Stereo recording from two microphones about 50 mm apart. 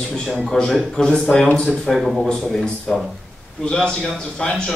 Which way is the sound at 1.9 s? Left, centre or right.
Centre.